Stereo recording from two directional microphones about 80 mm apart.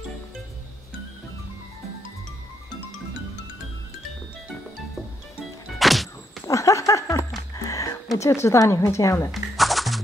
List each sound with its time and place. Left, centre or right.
5.7 s music: centre
6.4 s a sound: left
7.5 s music: left
8.2 s speech: left
9.3 s music: centre